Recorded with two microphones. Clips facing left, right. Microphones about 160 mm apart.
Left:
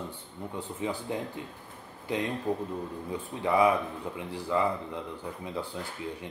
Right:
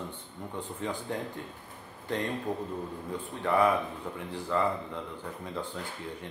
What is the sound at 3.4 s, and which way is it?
Speech, 10° left (ahead or behind).